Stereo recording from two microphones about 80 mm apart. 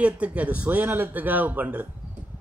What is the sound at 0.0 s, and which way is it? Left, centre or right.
Speech, centre.